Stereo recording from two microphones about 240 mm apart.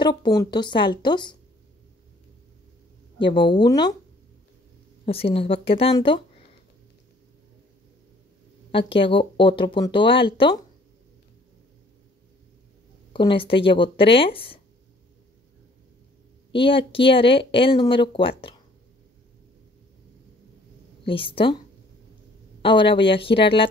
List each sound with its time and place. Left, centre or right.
0.0 s speech: centre
3.2 s speech: left
5.0 s speech: left
8.7 s speech: left
13.1 s speech: left
16.5 s speech: left
21.0 s speech: left
22.6 s speech: left